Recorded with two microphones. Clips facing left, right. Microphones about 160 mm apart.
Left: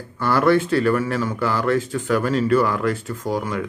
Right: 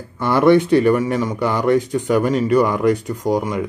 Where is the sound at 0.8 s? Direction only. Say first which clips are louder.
Right 4 dB; 15° right (ahead or behind).